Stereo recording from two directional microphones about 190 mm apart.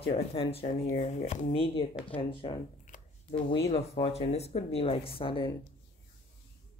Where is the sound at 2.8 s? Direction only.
40° left (ahead or behind).